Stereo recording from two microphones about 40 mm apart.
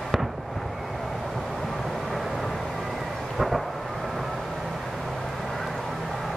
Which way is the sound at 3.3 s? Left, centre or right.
Centre.